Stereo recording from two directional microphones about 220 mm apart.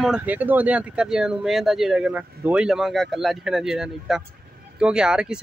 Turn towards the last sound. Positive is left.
turn(degrees=-5)  # may be behind; listen again after turning